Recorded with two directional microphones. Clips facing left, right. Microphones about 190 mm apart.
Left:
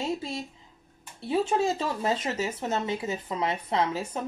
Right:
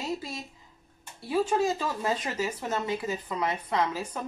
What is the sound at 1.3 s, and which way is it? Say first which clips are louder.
Speech: even; 25° left (ahead or behind).